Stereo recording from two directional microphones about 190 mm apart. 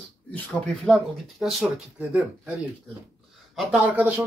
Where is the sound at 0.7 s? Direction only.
Centre (ahead or behind).